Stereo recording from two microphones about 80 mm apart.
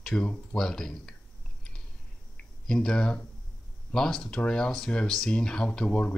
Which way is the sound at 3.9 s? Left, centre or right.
Centre.